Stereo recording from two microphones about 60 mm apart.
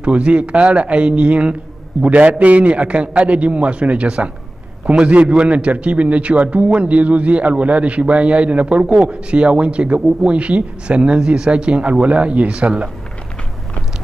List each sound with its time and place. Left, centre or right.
0.0 s a man's voice: centre